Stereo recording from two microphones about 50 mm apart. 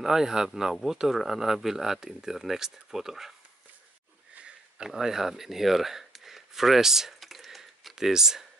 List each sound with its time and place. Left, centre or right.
0.0 s speech: centre
4.4 s sniff: right
4.8 s speech: centre